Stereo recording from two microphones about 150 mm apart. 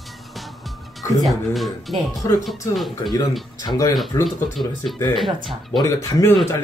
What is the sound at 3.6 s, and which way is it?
Speech, 25° left (ahead or behind).